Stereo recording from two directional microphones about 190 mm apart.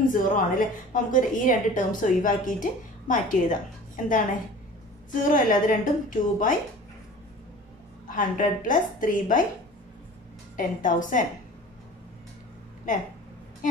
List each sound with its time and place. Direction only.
0.1 s a woman's voice: 45° left (ahead or behind)
8.1 s a woman's voice: 45° left (ahead or behind)
10.5 s a woman's voice: 45° left (ahead or behind)